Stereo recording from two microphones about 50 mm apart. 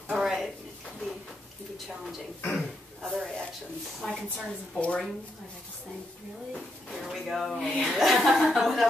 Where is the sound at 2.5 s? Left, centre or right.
Centre.